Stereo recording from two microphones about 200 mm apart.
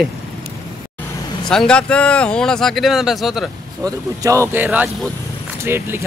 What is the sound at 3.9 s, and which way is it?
Speech, 15° right (ahead or behind).